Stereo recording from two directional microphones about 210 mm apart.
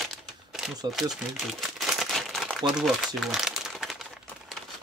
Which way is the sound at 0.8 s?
Centre (ahead or behind).